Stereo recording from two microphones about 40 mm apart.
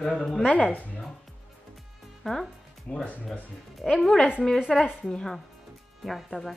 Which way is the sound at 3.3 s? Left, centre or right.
Centre.